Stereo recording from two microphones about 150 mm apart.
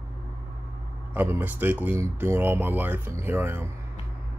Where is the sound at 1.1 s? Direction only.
15° right (ahead or behind).